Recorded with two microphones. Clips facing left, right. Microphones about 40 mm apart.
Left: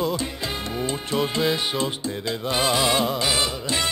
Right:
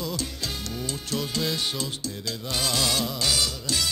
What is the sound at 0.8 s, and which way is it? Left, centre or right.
Music, left.